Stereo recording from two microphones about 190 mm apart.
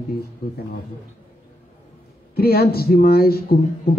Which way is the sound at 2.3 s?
55° left (ahead or behind).